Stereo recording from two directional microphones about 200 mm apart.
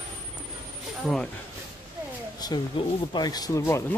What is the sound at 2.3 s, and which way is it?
Speech, 20° left (ahead or behind).